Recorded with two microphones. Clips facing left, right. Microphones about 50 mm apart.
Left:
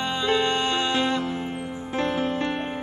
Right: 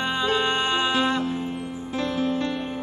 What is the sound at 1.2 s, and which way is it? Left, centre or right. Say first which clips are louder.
Music: right 1 dB; left.